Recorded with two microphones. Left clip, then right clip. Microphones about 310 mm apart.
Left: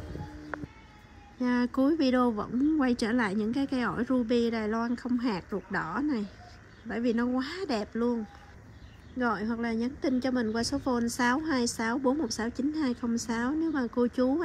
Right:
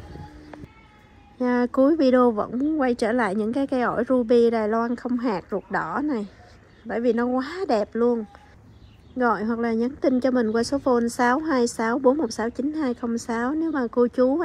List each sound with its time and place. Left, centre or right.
1.4 s a woman's voice: centre
9.2 s a woman's voice: centre
12.0 s a woman's voice: right
12.5 s a woman's voice: centre
13.5 s speech: right
13.7 s a woman's voice: centre